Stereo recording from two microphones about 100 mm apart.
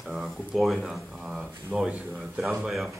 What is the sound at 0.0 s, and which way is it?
Speech, 5° right (ahead or behind).